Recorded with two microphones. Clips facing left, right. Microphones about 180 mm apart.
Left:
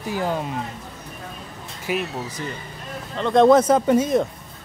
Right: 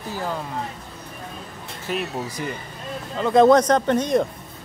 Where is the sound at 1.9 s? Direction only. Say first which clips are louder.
Left 2 dB; 10° left (ahead or behind).